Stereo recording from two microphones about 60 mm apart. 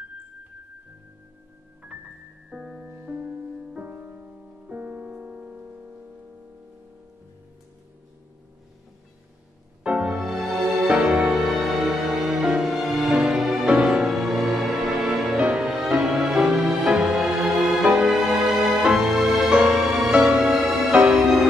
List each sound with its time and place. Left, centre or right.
2.5 s music: centre
2.9 s music: right
9.8 s music: centre
10.9 s music: centre
14.1 s music: centre
20.9 s music: centre